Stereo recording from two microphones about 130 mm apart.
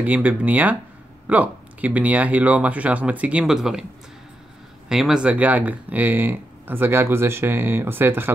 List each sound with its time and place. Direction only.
0.0 s speech: 10° right (ahead or behind)
4.8 s speech: 5° right (ahead or behind)